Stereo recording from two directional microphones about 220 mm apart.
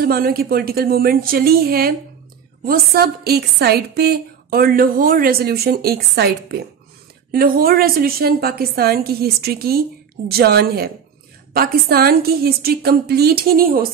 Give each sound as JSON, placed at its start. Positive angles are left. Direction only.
{"t": 0.0, "sound": "a woman's voice", "side_deg": -45}